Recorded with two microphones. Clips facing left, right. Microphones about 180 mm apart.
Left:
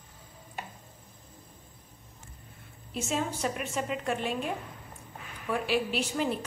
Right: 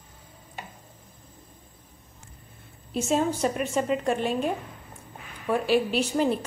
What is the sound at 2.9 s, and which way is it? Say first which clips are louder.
A woman's voice: right 7 dB; 40° right (ahead or behind).